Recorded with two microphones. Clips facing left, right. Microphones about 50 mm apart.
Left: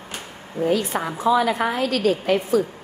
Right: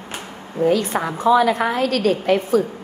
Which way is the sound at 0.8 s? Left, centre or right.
Right.